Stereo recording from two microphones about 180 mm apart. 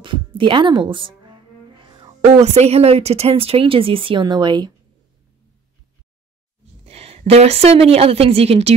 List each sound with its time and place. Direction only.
0.0 s music: 30° right (ahead or behind)
2.4 s speech: 35° right (ahead or behind)
6.9 s a woman's voice: 35° right (ahead or behind)